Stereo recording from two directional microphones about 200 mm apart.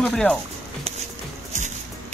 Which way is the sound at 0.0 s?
5° left (ahead or behind).